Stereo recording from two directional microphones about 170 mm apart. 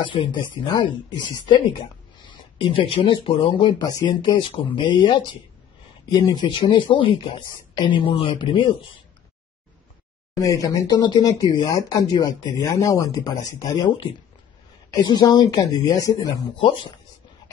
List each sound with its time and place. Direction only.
0.0 s speech: 30° left (ahead or behind)
10.3 s speech: 20° left (ahead or behind)
16.5 s speech: 35° left (ahead or behind)